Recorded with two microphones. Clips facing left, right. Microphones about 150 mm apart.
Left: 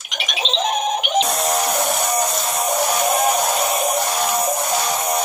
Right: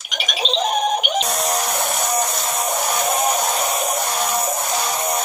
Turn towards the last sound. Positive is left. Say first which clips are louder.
# left 1 dB
turn(degrees=0)  # may be behind; listen again after turning